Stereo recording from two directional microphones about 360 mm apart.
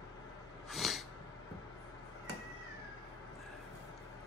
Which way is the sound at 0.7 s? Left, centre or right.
Centre.